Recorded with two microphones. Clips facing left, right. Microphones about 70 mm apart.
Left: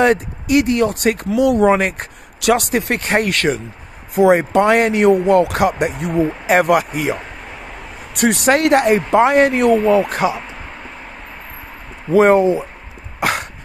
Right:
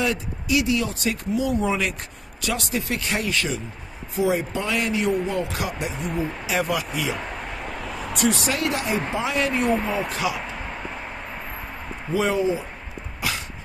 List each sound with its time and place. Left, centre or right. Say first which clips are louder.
0.0 s speech: left 11 dB; left
1.3 s speech: left 10 dB; left
8.2 s speech: left 9 dB; left
9.6 s speech: left 10 dB; left
12.1 s speech: left 11 dB; left